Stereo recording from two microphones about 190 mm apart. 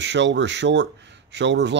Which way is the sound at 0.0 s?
70° right (ahead or behind).